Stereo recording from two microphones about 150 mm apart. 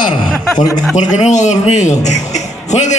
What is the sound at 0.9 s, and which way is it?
A man's voice, 55° left (ahead or behind).